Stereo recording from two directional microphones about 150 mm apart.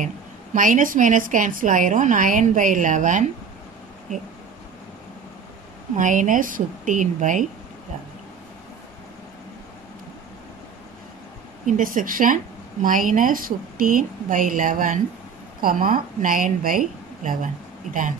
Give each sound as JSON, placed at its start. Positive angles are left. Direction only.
{"t": 0.6, "sound": "a woman's voice", "side_deg": -65}
{"t": 5.9, "sound": "a woman's voice", "side_deg": -60}
{"t": 11.6, "sound": "a woman's voice", "side_deg": -60}